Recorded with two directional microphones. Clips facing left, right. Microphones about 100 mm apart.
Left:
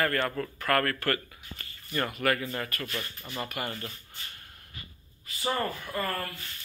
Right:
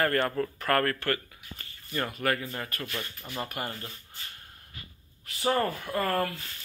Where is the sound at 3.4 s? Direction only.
35° right (ahead or behind).